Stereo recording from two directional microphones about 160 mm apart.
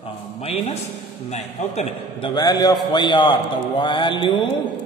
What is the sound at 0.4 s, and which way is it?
A man's voice, 40° left (ahead or behind).